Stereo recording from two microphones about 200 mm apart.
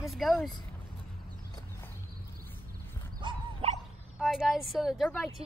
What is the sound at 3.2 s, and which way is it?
Dog, 30° right (ahead or behind).